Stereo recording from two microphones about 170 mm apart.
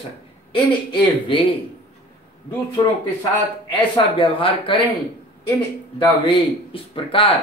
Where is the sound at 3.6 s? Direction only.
30° left (ahead or behind).